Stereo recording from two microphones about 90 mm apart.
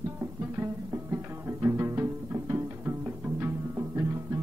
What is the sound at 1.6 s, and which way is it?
Music, 30° right (ahead or behind).